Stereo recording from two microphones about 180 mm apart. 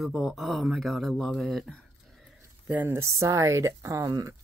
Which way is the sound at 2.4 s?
10° right (ahead or behind).